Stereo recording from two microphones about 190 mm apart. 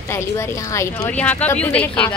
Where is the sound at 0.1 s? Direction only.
15° left (ahead or behind).